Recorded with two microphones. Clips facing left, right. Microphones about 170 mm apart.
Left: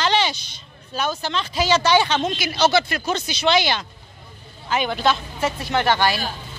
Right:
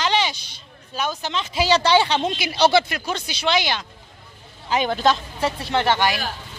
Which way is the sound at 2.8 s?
10° right (ahead or behind).